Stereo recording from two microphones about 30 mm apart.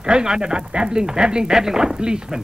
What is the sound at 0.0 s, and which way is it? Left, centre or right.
Speech, right.